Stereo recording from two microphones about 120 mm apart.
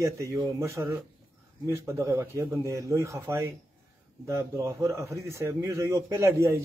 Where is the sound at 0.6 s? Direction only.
25° right (ahead or behind).